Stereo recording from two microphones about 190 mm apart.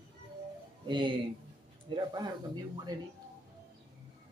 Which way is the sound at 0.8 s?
25° right (ahead or behind).